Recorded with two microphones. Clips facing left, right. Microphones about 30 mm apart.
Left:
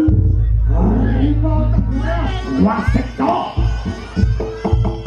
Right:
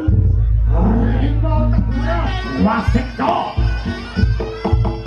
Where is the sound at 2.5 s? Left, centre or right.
Right.